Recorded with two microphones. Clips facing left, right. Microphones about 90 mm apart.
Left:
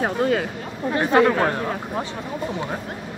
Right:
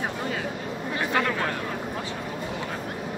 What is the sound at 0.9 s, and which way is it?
Speech, 45° left (ahead or behind).